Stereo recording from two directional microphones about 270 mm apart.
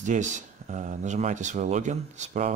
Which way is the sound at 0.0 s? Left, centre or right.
Right.